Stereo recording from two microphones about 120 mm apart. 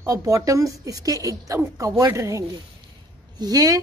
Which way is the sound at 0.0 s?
25° right (ahead or behind).